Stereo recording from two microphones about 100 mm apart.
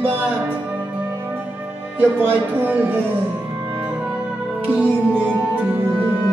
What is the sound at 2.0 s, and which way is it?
A man's voice, 15° right (ahead or behind).